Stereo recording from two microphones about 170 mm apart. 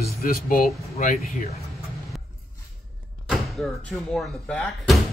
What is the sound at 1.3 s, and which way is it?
Speech, 40° left (ahead or behind).